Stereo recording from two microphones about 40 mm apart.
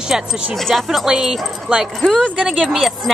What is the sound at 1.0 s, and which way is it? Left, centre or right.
Speech, centre.